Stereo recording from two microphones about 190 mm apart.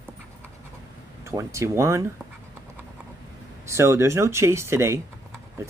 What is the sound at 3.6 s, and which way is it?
Speech, 15° right (ahead or behind).